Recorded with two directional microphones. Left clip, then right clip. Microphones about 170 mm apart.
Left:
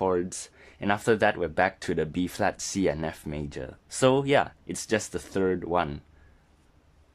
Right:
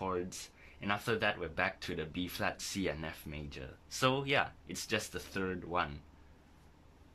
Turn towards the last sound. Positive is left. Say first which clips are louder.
# left 10 dB
turn(degrees=45)  # may be behind; listen again after turning